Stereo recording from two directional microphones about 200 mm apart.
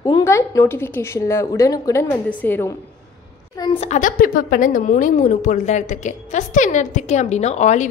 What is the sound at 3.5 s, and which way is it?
A woman's voice, 30° left (ahead or behind).